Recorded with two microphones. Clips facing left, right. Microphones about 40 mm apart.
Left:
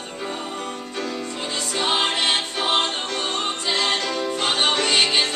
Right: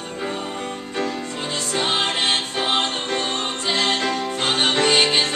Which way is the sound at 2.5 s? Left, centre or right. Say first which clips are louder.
Even; right.